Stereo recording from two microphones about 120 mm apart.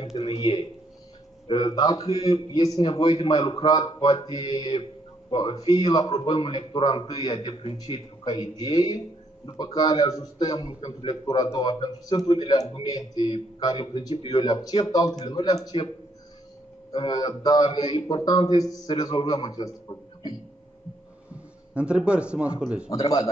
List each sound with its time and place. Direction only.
0.0 s a man's voice: 55° left (ahead or behind); by 15.7 s 30° left (ahead or behind)
16.9 s a man's voice: 35° left (ahead or behind)
21.7 s speech: 10° right (ahead or behind)
22.8 s a man's voice: 30° left (ahead or behind)